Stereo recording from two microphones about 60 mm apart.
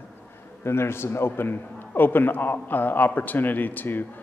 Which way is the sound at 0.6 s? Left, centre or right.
Left.